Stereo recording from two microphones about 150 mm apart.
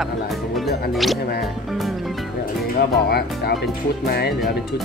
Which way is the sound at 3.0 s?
90° left.